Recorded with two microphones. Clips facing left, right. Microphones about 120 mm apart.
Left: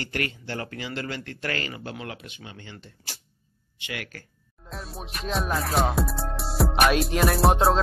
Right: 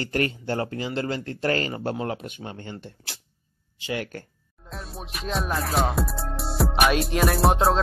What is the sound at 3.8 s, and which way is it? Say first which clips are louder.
Speech: right 7 dB; 35° right (ahead or behind).